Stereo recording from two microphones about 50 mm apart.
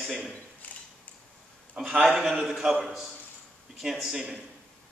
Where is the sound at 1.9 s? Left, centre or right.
Right.